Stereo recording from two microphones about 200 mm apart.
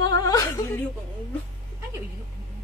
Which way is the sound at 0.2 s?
20° left (ahead or behind).